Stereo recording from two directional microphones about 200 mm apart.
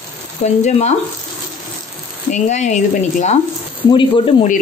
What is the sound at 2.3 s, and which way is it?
Speech, 35° left (ahead or behind).